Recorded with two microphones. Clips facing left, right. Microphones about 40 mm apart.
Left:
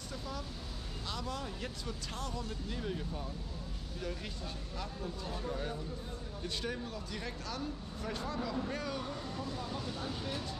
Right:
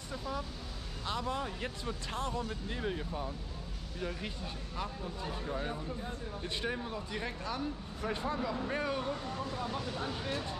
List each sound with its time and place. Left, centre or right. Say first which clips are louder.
0.1 s speech: right 5 dB; centre